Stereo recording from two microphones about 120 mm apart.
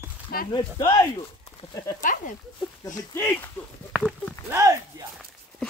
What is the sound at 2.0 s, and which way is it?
Speech, 90° left.